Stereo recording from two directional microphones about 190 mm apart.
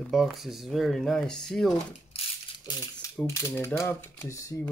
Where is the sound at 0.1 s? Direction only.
Centre (ahead or behind).